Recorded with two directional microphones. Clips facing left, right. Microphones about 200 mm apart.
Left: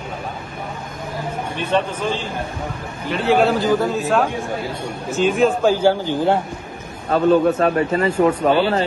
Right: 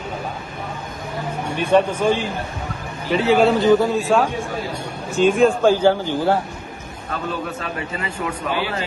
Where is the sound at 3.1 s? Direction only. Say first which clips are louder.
Right 1 dB; centre (ahead or behind).